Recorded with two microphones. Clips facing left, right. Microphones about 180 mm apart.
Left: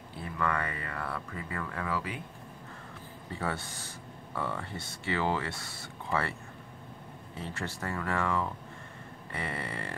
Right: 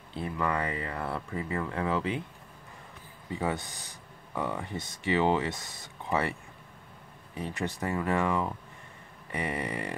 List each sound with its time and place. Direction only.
0.1 s speech: 20° right (ahead or behind)
3.3 s speech: 15° right (ahead or behind)
7.3 s speech: 15° right (ahead or behind)